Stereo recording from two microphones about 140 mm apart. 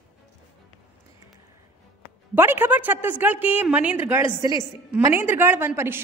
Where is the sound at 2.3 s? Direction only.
15° right (ahead or behind).